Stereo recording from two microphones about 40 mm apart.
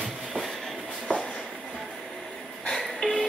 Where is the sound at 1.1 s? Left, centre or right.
Left.